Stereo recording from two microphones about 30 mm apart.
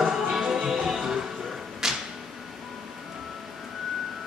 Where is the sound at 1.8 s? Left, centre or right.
Centre.